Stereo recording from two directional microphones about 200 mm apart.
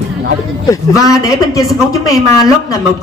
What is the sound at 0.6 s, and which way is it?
A man's voice, 15° left (ahead or behind).